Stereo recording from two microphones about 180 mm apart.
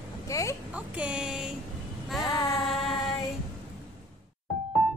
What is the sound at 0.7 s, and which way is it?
Speech, 5° right (ahead or behind).